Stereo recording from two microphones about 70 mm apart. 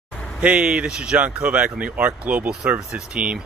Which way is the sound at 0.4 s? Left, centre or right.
Centre.